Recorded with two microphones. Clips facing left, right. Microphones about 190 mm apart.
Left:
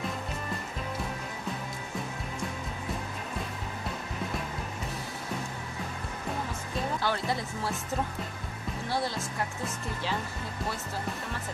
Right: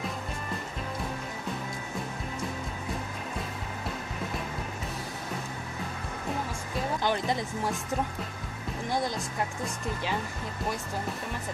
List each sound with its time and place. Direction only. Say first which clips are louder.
7.0 s speech: right 4 dB; 20° right (ahead or behind)
8.8 s speech: right 2 dB; 15° right (ahead or behind)